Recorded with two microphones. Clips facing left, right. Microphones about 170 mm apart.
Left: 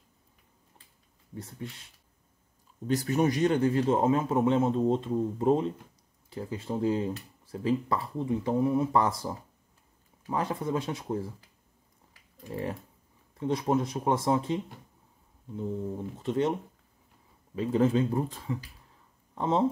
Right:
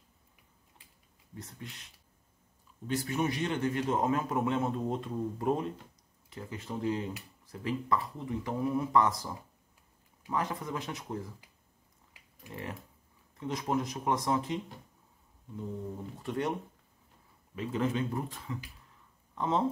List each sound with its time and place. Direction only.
1.3 s a man's voice: 30° left (ahead or behind)
2.9 s a man's voice: 40° left (ahead or behind)
12.4 s a man's voice: 30° left (ahead or behind)
16.2 s a man's voice: 25° left (ahead or behind)
17.6 s speech: 35° left (ahead or behind)